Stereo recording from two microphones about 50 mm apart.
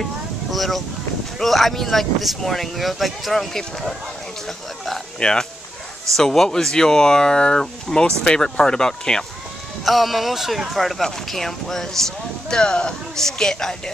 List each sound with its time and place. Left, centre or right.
0.0 s boat: centre
1.4 s speech: centre
4.5 s speech: centre
5.2 s speech: centre
9.8 s speech: centre